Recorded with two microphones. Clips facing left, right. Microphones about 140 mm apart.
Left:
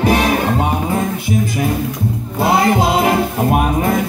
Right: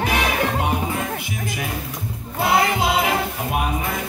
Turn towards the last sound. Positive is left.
turn(degrees=45)  # may be behind; listen again after turning